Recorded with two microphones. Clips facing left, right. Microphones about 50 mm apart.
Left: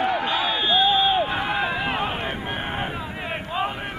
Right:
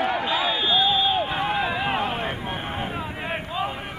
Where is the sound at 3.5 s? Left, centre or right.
Centre.